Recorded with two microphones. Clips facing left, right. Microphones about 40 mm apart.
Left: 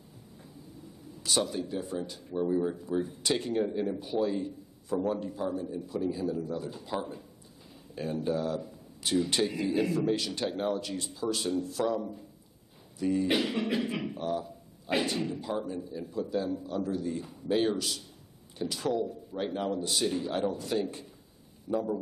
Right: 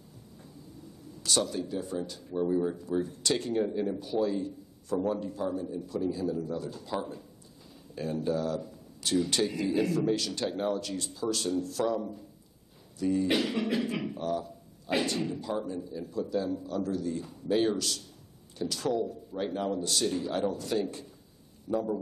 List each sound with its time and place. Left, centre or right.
1.2 s speech: centre
13.0 s speech: centre